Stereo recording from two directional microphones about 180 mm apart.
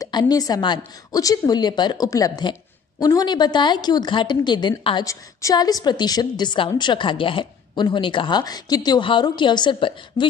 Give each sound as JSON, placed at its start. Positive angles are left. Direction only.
{"t": 0.0, "sound": "a woman's voice", "side_deg": 20}